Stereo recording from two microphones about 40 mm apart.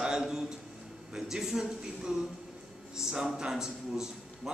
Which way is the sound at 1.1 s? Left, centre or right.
Centre.